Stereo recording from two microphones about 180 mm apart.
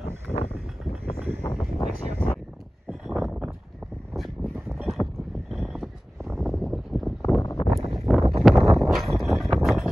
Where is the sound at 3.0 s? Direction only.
Centre (ahead or behind).